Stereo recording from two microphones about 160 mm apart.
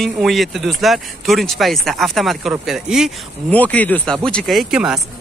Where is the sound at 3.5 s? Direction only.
10° left (ahead or behind).